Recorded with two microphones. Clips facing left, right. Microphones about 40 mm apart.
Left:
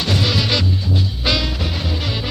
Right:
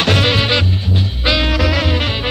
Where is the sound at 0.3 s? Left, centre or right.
Right.